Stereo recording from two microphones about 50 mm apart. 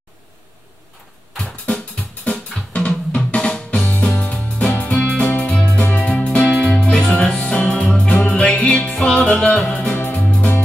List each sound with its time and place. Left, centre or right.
1.7 s music: left
2.7 s drum: left
3.3 s music: centre
4.1 s music: left
5.5 s music: centre
9.9 s music: left